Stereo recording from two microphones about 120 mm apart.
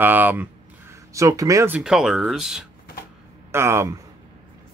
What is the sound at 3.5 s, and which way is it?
Speech, 20° right (ahead or behind).